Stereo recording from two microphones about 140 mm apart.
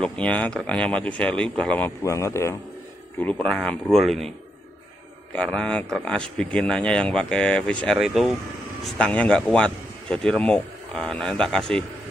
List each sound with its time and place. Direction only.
0.0 s speech: 10° left (ahead or behind)
2.0 s speech: 20° left (ahead or behind); by 4.3 s centre (ahead or behind)
5.3 s speech: 5° left (ahead or behind)